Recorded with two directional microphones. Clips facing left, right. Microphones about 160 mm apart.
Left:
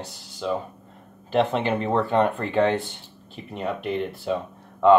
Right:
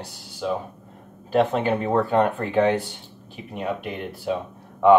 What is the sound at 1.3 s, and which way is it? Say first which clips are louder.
Speech: right 1 dB; centre (ahead or behind).